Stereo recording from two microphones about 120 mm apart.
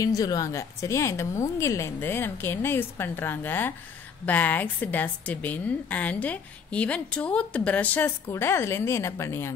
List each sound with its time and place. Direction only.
0.0 s a woman's voice: 30° left (ahead or behind)